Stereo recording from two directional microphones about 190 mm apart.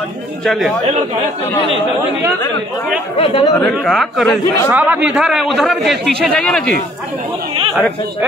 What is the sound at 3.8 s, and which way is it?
Speech, centre (ahead or behind).